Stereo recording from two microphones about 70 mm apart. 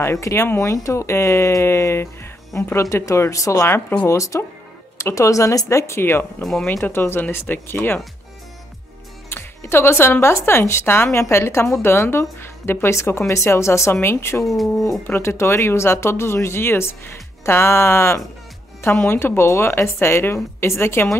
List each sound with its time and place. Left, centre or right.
0.0 s speech: left
6.4 s speech: centre
6.8 s speech: left
9.3 s speech: left
14.4 s speech: centre
15.2 s speech: left